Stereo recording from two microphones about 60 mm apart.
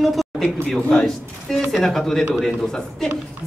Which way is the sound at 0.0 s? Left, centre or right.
Centre.